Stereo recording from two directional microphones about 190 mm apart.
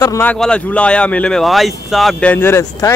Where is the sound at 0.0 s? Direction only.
15° left (ahead or behind).